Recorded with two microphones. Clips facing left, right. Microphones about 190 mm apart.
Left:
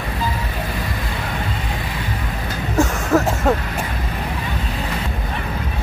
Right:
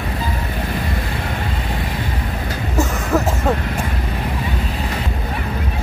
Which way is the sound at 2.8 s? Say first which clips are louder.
Left 2 dB; centre (ahead or behind).